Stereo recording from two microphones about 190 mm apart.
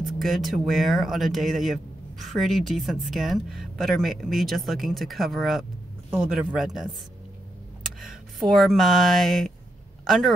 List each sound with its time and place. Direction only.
0.0 s speech: centre (ahead or behind)